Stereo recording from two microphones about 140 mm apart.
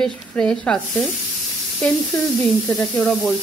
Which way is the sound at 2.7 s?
5° left (ahead or behind).